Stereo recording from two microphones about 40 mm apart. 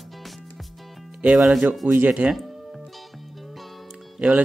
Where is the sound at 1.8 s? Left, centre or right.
Right.